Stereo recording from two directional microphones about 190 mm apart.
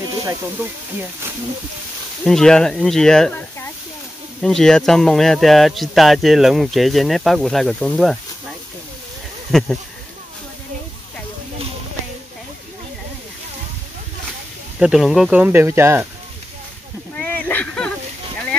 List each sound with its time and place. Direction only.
0.2 s speech: 15° right (ahead or behind)
2.2 s speech: 5° left (ahead or behind)
9.5 s speech: centre (ahead or behind)
14.8 s speech: centre (ahead or behind)
17.1 s a sound: 10° left (ahead or behind)